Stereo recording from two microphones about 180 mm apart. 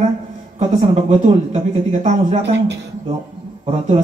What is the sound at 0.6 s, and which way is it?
Speech, 40° right (ahead or behind).